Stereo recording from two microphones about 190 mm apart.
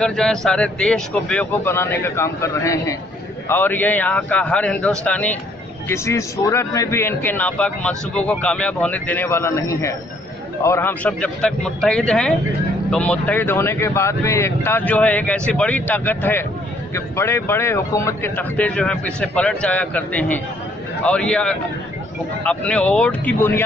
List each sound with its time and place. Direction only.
0.0 s speech: 5° left (ahead or behind)